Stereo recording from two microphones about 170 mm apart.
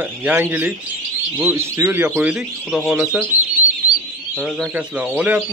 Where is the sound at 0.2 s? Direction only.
10° right (ahead or behind).